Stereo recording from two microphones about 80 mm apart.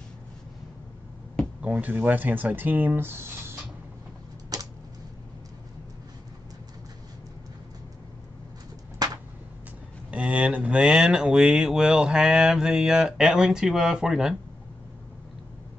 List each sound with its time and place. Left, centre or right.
1.6 s speech: right
4.5 s typewriter: right
9.0 s a sound: right
10.1 s speech: centre